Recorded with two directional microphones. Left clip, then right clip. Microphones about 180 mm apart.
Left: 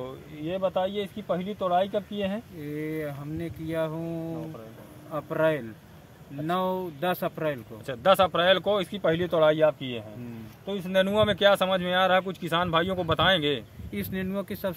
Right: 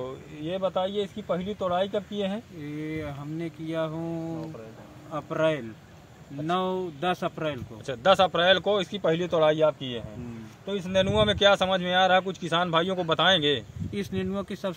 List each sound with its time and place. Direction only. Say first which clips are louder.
0.0 s speech: right 1 dB; 10° right (ahead or behind)
2.8 s speech: left 2 dB; 15° left (ahead or behind)
7.8 s speech: even; 20° right (ahead or behind)
13.9 s speech: right 1 dB; 15° left (ahead or behind)